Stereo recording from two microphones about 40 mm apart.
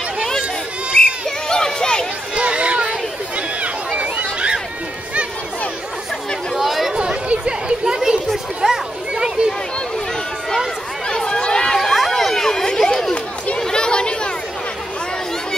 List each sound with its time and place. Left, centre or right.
0.9 s children playing: centre
2.3 s run: right
6.5 s chatter: centre
6.9 s chatter: right
8.6 s children playing: centre
9.1 s a sound: right
11.1 s chatter: centre
11.5 s crowd: centre
11.8 s chatter: centre; by 14.3 s left